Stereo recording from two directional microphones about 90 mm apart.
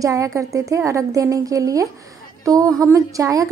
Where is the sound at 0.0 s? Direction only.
35° right (ahead or behind).